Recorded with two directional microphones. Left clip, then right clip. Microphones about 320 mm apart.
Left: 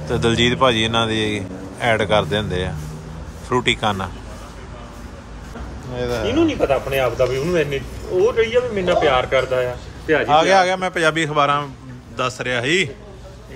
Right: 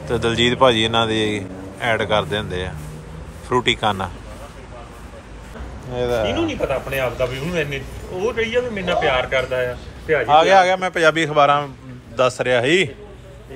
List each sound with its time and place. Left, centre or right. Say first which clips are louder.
0.1 s speech: even; centre
5.9 s a man's voice: right 3 dB; centre
6.3 s speech: left 4 dB; left
10.2 s a man's voice: right 2 dB; centre